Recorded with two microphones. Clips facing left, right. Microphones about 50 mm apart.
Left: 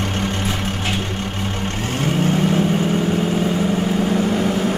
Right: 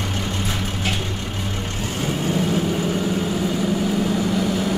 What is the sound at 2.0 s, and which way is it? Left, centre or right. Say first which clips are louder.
Vehicle: left 4 dB; left.